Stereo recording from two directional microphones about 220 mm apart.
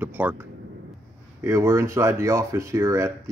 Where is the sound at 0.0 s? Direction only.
10° right (ahead or behind).